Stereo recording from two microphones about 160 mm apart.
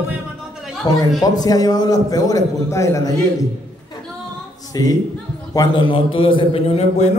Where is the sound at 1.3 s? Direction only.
25° left (ahead or behind).